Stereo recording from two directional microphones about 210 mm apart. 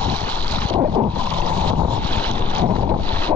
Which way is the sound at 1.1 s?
5° left (ahead or behind).